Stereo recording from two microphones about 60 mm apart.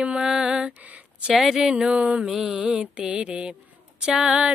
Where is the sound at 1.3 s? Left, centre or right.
Centre.